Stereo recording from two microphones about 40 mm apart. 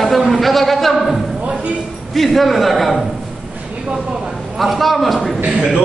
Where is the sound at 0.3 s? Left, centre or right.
Centre.